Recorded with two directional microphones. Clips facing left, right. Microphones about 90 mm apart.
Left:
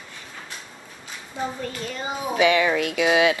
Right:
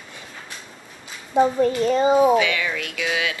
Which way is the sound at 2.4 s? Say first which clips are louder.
Left 3 dB; 30° left (ahead or behind).